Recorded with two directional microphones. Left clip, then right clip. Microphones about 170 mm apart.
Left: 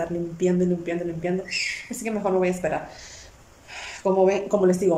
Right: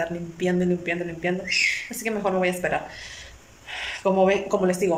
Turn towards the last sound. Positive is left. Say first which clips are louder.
# left 2 dB
turn(degrees=10)  # may be behind; listen again after turning